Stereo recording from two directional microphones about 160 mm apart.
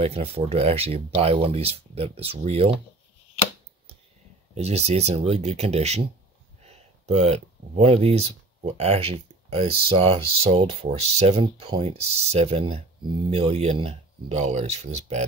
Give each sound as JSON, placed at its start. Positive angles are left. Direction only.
{"t": 0.0, "sound": "speech", "side_deg": -40}
{"t": 4.6, "sound": "speech", "side_deg": -40}